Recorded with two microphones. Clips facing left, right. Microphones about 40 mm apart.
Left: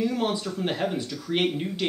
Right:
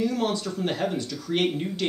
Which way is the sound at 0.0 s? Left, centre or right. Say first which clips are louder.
Even; left.